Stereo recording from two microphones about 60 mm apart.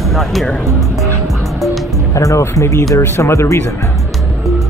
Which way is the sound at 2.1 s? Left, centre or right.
Left.